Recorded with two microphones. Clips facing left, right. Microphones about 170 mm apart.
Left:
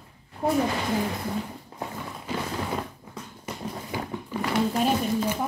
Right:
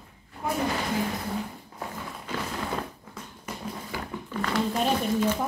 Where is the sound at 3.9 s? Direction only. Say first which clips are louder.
Left 4 dB; 20° left (ahead or behind).